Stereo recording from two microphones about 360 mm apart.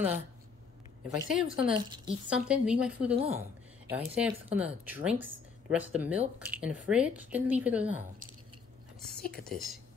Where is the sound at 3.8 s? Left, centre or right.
Centre.